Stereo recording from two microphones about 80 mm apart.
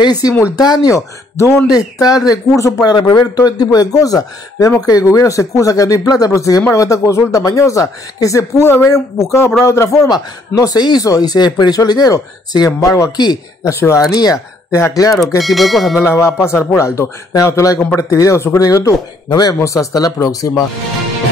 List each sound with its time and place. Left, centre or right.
0.0 s a man's voice: left
2.9 s a man's voice: left
13.1 s speech: left
13.7 s speech: left
15.1 s speech: centre
16.0 s speech: left
19.2 s speech: left
19.6 s a man's voice: left